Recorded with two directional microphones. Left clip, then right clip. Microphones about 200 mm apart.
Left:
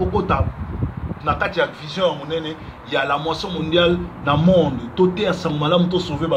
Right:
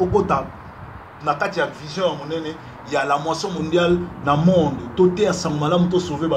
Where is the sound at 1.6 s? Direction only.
10° right (ahead or behind).